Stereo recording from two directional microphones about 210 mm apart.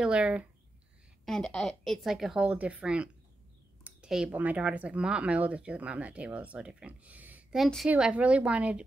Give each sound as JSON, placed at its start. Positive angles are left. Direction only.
{"t": 0.0, "sound": "speech", "side_deg": -5}